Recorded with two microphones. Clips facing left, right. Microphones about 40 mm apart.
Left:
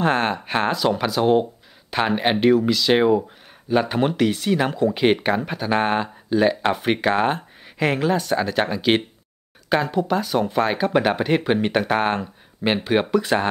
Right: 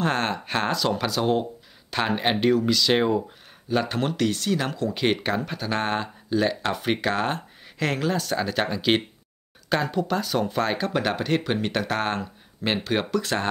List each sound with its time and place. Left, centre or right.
0.0 s speech: centre